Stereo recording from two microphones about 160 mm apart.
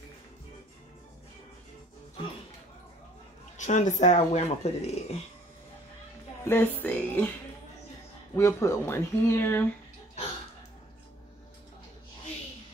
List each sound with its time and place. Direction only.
3.5 s speech: 50° left (ahead or behind)
6.4 s speech: 15° left (ahead or behind)
8.4 s speech: 20° left (ahead or behind)